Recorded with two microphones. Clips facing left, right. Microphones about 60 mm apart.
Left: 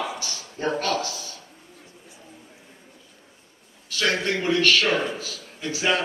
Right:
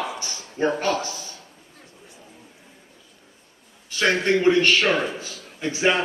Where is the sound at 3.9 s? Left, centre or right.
Right.